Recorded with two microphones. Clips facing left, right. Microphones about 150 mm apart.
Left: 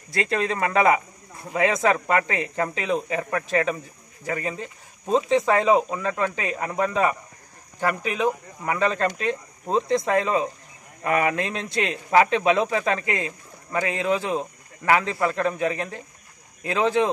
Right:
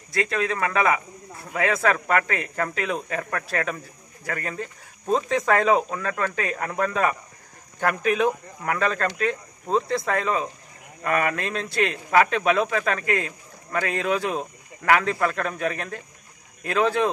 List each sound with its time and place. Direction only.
0.1 s a man's voice: 30° left (ahead or behind); by 8.8 s 10° left (ahead or behind)
8.8 s a man's voice: 25° left (ahead or behind)